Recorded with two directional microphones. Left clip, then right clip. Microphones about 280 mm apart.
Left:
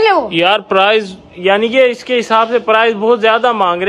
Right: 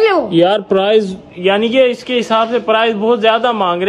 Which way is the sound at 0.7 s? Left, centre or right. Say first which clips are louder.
Left 1 dB; centre.